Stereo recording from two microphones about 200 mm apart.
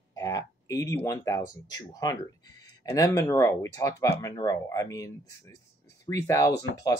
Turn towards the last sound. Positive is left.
turn(degrees=15)  # may be behind; listen again after turning